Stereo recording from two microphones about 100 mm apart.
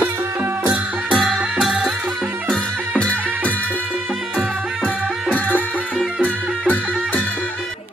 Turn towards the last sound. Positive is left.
turn(degrees=15)  # may be behind; listen again after turning